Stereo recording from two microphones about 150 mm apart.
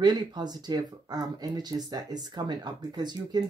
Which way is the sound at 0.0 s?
30° right (ahead or behind).